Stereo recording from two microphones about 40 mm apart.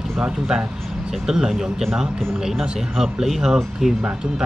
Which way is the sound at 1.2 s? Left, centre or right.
Centre.